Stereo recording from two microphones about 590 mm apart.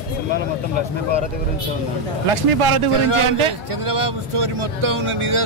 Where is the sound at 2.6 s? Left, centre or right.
Right.